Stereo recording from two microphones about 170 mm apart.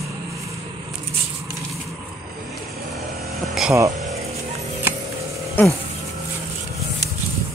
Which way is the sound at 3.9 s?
40° right (ahead or behind).